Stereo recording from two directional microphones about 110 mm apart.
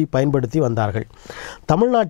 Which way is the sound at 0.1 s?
15° left (ahead or behind).